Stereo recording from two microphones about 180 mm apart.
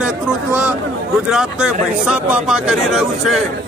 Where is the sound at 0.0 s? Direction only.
5° right (ahead or behind).